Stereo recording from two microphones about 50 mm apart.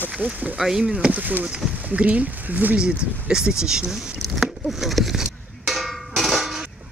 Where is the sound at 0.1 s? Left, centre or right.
Right.